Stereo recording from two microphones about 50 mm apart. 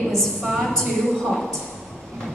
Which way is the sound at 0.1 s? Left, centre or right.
Centre.